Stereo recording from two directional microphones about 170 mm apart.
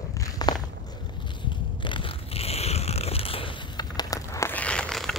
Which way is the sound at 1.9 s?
30° left (ahead or behind).